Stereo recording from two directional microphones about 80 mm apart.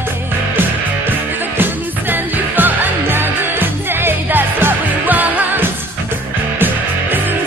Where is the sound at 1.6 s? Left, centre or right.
Right.